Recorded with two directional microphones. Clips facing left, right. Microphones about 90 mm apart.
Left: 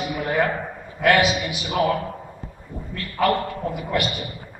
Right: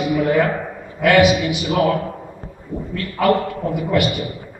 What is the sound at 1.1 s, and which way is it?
A man's voice, 10° right (ahead or behind).